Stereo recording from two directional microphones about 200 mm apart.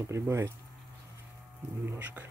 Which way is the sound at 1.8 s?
10° right (ahead or behind).